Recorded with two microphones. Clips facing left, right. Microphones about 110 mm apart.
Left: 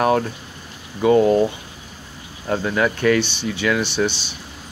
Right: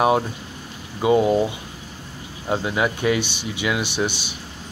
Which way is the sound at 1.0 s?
10° right (ahead or behind).